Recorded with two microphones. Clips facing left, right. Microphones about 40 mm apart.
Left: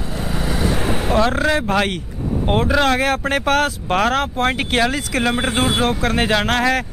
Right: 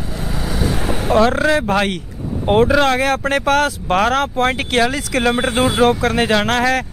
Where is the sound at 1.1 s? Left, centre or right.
Centre.